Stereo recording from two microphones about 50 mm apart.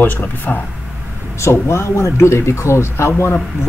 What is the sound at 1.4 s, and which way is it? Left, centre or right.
Speech, left.